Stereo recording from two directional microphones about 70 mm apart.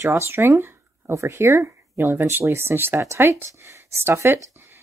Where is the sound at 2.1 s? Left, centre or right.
Right.